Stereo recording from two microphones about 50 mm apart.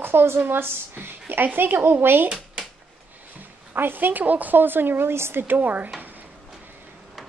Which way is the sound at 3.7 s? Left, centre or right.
Right.